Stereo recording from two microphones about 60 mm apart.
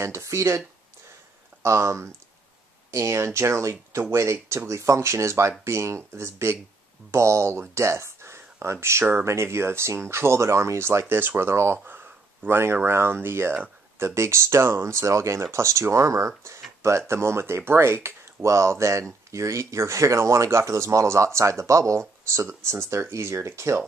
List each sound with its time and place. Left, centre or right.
0.0 s speech: right